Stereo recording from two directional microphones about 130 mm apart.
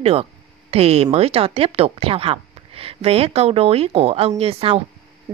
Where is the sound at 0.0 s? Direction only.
50° right (ahead or behind).